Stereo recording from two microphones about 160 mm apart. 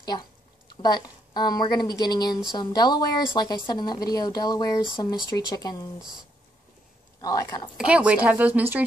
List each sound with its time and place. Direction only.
0.0 s a woman's voice: 25° left (ahead or behind)
7.2 s speech: 20° left (ahead or behind)
7.7 s speech: 5° right (ahead or behind)